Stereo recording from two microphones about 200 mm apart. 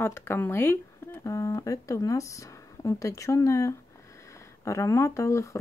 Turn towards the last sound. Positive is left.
turn(degrees=15)  # may be behind; listen again after turning